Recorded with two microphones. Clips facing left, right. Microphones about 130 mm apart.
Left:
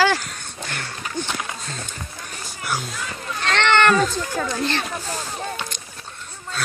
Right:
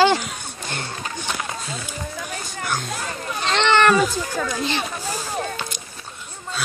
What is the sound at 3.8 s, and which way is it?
Speech, 5° right (ahead or behind).